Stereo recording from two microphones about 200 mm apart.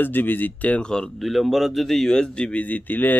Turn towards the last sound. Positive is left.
turn(degrees=10)  # may be behind; listen again after turning